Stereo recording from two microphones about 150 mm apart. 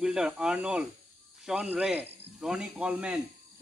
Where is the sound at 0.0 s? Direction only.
5° right (ahead or behind).